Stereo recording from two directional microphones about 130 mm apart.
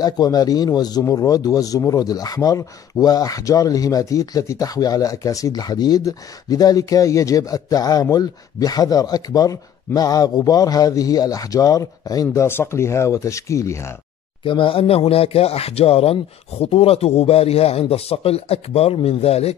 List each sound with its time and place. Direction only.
0.0 s speech: 30° left (ahead or behind)
14.4 s speech: 40° left (ahead or behind)